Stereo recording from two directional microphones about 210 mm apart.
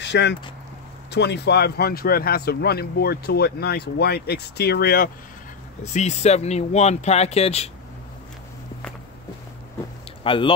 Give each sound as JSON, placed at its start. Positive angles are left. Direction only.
{"t": 0.0, "sound": "speech", "side_deg": 55}
{"t": 5.9, "sound": "speech", "side_deg": 30}
{"t": 10.2, "sound": "speech", "side_deg": 25}